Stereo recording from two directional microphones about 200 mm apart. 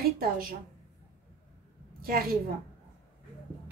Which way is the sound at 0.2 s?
45° right (ahead or behind).